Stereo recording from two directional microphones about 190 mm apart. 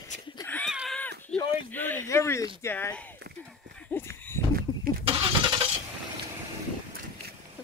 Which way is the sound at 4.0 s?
10° left (ahead or behind).